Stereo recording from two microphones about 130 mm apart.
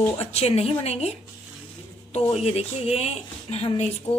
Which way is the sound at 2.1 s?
50° left (ahead or behind).